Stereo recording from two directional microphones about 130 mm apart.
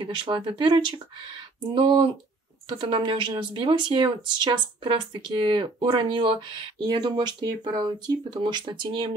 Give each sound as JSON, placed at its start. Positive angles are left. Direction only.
{"t": 0.0, "sound": "speech", "side_deg": -40}